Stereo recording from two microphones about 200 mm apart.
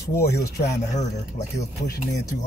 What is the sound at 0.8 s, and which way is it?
Speech, 35° left (ahead or behind).